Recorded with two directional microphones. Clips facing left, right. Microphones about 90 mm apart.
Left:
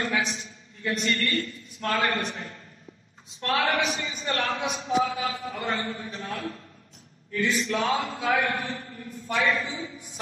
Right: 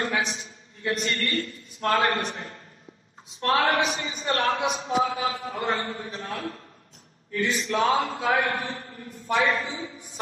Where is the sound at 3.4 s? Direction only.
35° right (ahead or behind).